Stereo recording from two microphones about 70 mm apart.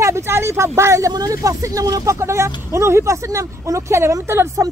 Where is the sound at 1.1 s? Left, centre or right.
Right.